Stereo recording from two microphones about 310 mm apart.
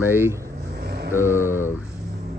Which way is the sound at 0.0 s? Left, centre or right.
Centre.